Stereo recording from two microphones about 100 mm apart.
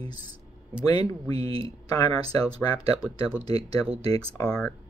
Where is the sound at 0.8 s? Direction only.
40° left (ahead or behind).